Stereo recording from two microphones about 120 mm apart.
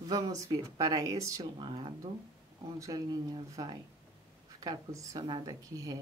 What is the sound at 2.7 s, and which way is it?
A woman's voice, 30° right (ahead or behind).